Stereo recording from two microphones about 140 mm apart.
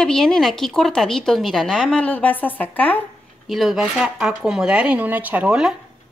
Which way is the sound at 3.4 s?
Centre (ahead or behind).